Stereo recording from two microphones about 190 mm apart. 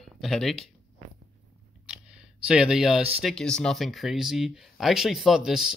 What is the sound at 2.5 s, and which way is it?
Speech, 5° right (ahead or behind).